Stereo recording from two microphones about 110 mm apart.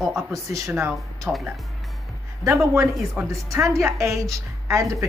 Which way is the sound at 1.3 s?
15° right (ahead or behind).